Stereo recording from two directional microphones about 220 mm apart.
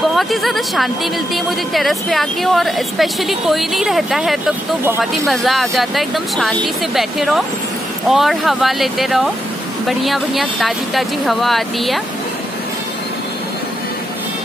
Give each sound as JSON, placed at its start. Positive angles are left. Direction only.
{"t": 0.1, "sound": "a woman's voice", "side_deg": 0}